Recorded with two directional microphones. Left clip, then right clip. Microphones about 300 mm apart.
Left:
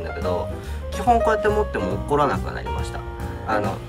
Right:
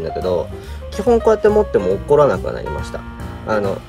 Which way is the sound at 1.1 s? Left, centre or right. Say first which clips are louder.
Right 5 dB; centre.